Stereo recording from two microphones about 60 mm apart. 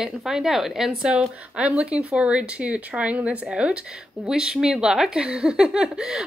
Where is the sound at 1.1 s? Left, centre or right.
Centre.